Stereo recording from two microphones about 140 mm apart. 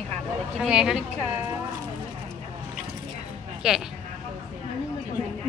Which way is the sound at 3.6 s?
5° right (ahead or behind).